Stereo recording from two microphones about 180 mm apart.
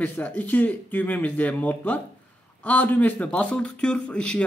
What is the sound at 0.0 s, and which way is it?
Speech, 10° left (ahead or behind).